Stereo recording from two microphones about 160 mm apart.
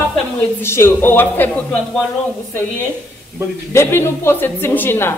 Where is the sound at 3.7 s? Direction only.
15° left (ahead or behind).